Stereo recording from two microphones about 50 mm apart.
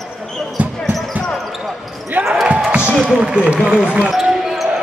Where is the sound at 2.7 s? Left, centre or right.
Right.